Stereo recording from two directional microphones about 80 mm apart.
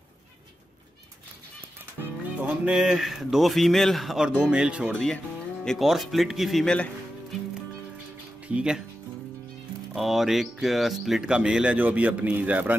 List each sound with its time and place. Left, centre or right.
2.0 s music: right
2.7 s speech: centre
4.3 s speech: centre
4.9 s speech: centre
5.7 s speech: centre
8.5 s speech: centre
9.9 s speech: centre; by 12.7 s right